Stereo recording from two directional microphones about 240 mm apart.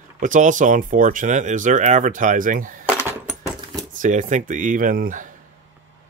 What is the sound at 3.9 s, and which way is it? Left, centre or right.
Speech, right.